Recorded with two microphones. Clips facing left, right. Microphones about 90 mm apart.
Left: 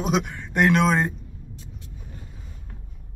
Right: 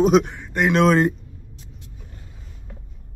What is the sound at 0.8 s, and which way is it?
Speech, 60° right (ahead or behind).